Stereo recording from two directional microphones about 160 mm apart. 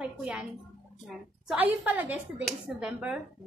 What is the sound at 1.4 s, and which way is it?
A woman's voice, 10° right (ahead or behind).